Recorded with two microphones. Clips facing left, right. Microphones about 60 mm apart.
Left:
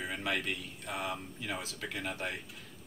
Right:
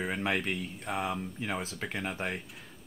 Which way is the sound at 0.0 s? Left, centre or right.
Right.